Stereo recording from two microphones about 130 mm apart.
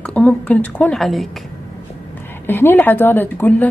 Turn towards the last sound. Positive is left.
turn(degrees=15)  # may be behind; listen again after turning